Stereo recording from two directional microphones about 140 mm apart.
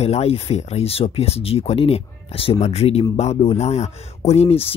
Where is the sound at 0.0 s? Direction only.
50° left (ahead or behind).